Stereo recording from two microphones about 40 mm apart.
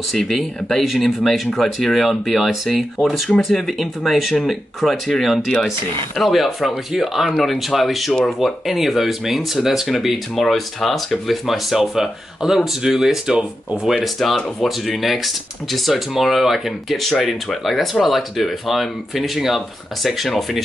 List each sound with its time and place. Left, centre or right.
0.1 s speech: centre
14.0 s speech: centre